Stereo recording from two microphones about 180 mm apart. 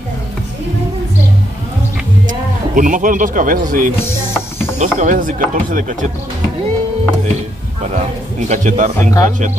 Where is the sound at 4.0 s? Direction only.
15° left (ahead or behind).